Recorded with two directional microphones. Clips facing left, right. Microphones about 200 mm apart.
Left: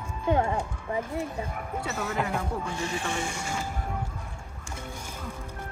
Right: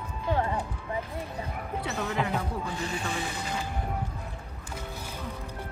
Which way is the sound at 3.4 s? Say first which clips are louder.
Left 1 dB; 45° left (ahead or behind).